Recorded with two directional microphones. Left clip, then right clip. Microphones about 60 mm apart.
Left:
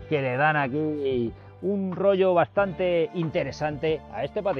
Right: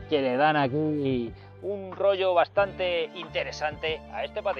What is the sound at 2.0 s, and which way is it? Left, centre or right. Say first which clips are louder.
A man's voice: left 2 dB; centre.